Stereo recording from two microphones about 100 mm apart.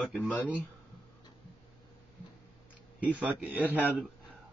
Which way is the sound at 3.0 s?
15° right (ahead or behind).